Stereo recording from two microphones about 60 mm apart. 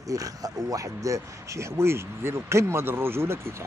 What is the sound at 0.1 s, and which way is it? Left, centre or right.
Speech, right.